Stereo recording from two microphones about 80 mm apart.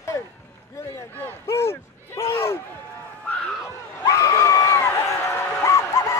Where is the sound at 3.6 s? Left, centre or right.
Left.